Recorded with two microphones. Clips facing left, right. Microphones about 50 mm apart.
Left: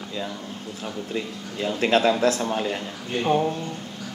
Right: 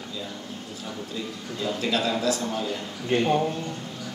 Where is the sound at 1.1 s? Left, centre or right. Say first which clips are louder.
Left 3 dB; left.